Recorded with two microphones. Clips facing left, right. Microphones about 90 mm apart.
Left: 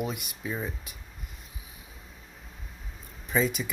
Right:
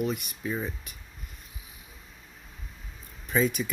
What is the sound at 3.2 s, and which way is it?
Speech, centre (ahead or behind).